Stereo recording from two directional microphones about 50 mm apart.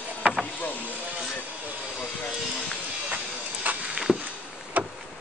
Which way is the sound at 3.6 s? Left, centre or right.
Right.